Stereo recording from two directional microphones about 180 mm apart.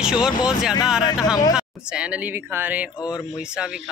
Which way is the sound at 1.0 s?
20° left (ahead or behind).